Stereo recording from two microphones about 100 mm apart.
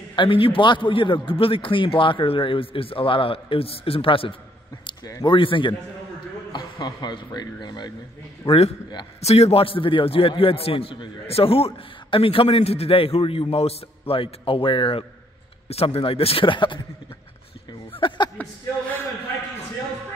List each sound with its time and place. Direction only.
0.1 s a man's voice: 60° left (ahead or behind)
6.5 s a man's voice: 45° left (ahead or behind)
8.5 s a man's voice: 90° left; by 15.0 s 60° left (ahead or behind)
15.7 s a man's voice: 80° left; by 16.8 s 55° left (ahead or behind)
17.9 s a sound: 50° left (ahead or behind)
18.4 s speech: 15° left (ahead or behind)